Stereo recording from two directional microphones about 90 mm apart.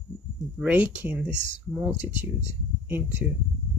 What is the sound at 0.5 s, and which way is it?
Speech, 15° right (ahead or behind).